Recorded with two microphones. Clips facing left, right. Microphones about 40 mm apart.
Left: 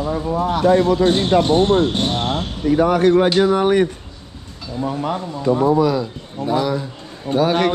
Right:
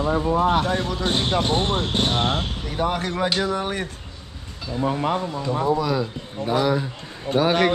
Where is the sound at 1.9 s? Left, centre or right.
Centre.